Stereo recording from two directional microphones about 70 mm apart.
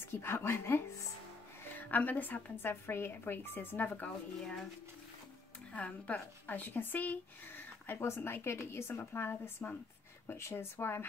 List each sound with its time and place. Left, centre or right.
0.1 s speech: left
1.8 s a woman's voice: left
2.5 s speech: left
3.9 s speech: centre
5.7 s speech: centre; by 9.4 s left
9.6 s speech: left
10.3 s speech: left